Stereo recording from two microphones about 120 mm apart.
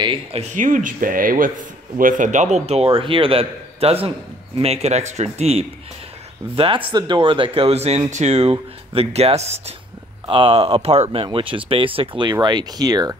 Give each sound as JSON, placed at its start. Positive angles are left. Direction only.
{"t": 0.0, "sound": "speech", "side_deg": -45}
{"t": 0.4, "sound": "speech", "side_deg": -90}
{"t": 2.1, "sound": "a man's voice", "side_deg": -90}
{"t": 6.5, "sound": "speech", "side_deg": -50}
{"t": 6.9, "sound": "a man's voice", "side_deg": -40}
{"t": 10.2, "sound": "speech", "side_deg": -45}